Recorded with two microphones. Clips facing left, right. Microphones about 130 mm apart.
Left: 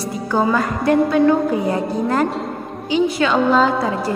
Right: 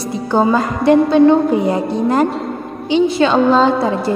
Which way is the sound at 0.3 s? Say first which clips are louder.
Right 4 dB; 25° right (ahead or behind).